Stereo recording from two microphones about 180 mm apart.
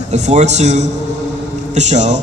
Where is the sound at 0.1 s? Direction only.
40° right (ahead or behind).